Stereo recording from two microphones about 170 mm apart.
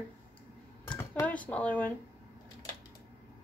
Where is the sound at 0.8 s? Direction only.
10° left (ahead or behind).